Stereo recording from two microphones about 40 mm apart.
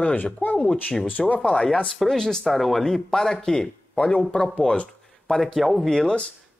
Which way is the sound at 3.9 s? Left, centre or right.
Left.